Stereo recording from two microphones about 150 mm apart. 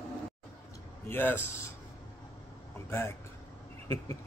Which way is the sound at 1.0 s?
15° left (ahead or behind).